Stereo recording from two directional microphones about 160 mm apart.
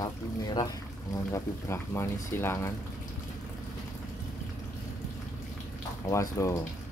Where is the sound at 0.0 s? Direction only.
25° left (ahead or behind).